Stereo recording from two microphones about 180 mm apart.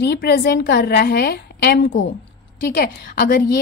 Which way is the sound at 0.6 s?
60° left (ahead or behind).